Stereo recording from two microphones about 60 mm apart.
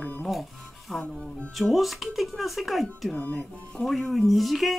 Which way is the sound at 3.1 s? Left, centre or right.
Left.